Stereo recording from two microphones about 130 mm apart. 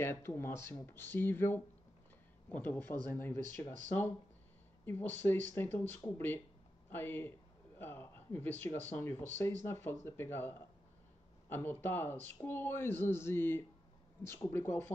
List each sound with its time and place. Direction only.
0.0 s speech: 20° left (ahead or behind)
4.8 s speech: 15° left (ahead or behind)